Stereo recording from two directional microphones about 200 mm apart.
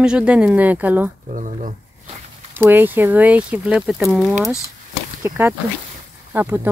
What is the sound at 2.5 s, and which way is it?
Speech, 10° right (ahead or behind).